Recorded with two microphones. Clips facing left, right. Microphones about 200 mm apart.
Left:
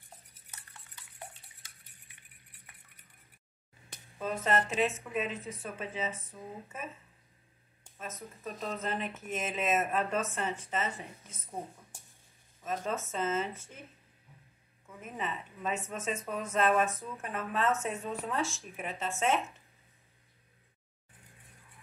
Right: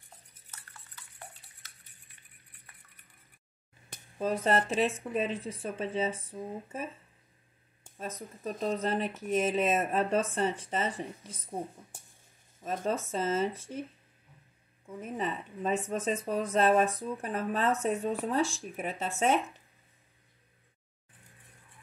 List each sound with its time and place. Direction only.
4.2 s speech: 35° right (ahead or behind)
8.2 s speech: 30° right (ahead or behind)
12.6 s speech: 35° right (ahead or behind)
15.0 s speech: 35° right (ahead or behind)